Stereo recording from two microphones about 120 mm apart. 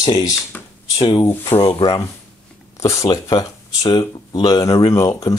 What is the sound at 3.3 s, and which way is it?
Speech, 40° left (ahead or behind).